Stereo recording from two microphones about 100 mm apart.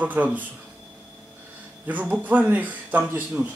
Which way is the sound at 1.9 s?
15° right (ahead or behind).